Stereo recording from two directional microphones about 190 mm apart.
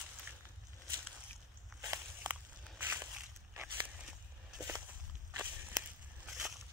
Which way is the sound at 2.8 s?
10° right (ahead or behind).